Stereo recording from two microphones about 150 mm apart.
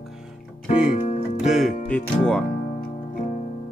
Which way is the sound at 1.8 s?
5° left (ahead or behind).